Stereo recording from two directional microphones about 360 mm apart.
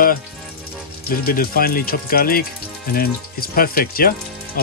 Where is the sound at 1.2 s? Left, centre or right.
Left.